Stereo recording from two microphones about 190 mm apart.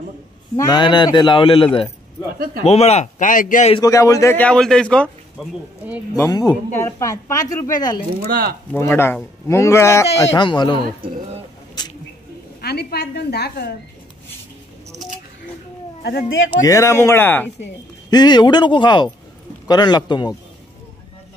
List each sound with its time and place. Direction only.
0.6 s a man's voice: 20° left (ahead or behind)
2.3 s speech: 50° right (ahead or behind)
2.6 s a man's voice: 35° left (ahead or behind)
3.7 s speech: 15° left (ahead or behind)
6.1 s speech: 20° left (ahead or behind)
12.6 s a woman's voice: 60° left (ahead or behind)
16.0 s a woman's voice: 60° left (ahead or behind)
16.6 s speech: 15° left (ahead or behind)
18.1 s a man's voice: 20° left (ahead or behind)